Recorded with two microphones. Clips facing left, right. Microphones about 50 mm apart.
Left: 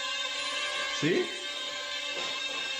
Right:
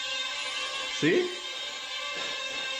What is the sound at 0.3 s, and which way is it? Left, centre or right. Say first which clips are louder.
Music: even; centre.